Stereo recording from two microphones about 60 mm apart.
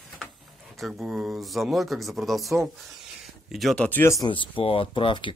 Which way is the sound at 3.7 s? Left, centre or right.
Left.